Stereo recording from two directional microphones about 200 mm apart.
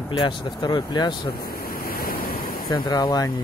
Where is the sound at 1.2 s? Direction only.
50° left (ahead or behind).